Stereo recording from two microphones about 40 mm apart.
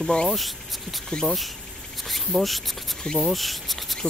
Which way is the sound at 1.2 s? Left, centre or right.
Centre.